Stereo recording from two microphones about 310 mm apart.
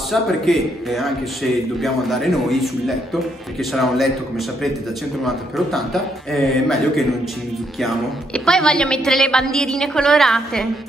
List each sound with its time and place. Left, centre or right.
0.1 s a woman's voice: centre
3.7 s a woman's voice: centre
5.2 s a woman's voice: centre